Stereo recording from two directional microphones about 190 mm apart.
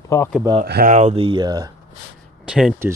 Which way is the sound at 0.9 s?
35° right (ahead or behind).